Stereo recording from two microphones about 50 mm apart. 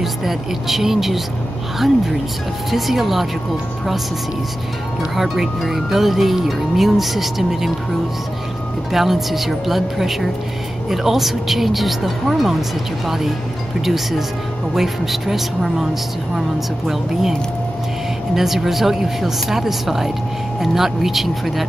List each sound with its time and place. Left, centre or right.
0.0 s speech: centre
2.7 s speech: centre
5.1 s speech: centre
8.9 s speech: centre